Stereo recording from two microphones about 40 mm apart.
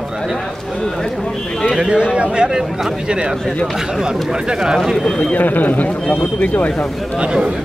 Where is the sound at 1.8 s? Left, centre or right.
Right.